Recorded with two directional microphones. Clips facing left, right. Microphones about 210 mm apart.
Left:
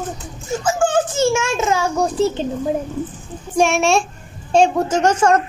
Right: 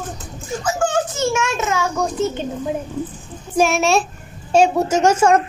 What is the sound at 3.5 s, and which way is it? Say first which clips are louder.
A child's voice: even; centre (ahead or behind).